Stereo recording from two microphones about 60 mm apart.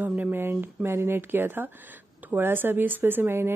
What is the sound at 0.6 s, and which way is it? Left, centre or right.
Speech, right.